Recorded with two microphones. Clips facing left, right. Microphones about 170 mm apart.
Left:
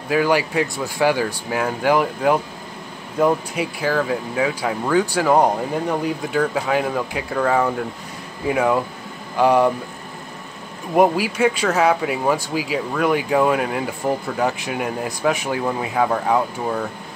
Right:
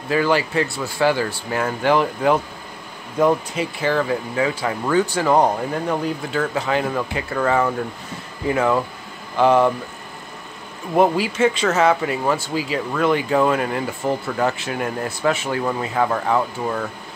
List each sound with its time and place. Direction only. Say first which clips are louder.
0.1 s speech: left 1 dB; 10° left (ahead or behind)
11.0 s speech: even; 10° left (ahead or behind)